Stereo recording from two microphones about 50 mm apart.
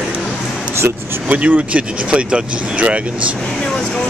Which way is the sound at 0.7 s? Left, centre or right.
Right.